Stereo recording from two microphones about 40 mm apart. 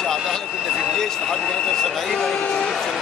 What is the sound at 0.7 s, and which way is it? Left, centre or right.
Speech, centre.